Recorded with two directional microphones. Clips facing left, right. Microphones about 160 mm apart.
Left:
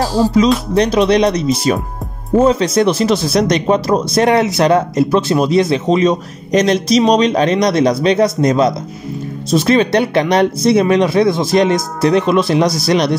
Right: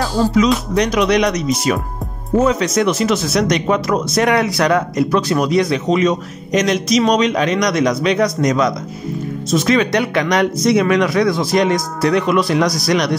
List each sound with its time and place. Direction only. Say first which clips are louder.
0.7 s speech: left 4 dB; 30° left (ahead or behind)